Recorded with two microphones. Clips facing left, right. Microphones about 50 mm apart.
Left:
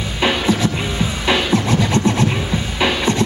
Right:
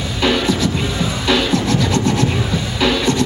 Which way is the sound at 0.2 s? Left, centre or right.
Left.